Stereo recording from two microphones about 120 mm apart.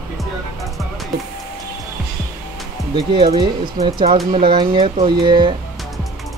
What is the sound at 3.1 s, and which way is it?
Speech, 45° right (ahead or behind).